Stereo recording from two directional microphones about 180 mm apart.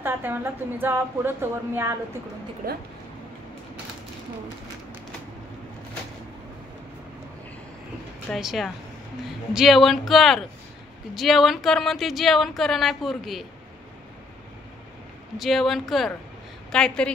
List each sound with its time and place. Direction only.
0.0 s a woman's voice: 10° right (ahead or behind)
2.6 s speech: 55° right (ahead or behind)
8.3 s speech: centre (ahead or behind)
15.3 s speech: centre (ahead or behind)